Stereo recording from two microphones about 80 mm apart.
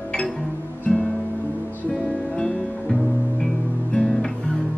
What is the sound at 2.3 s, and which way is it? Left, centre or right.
Music, centre.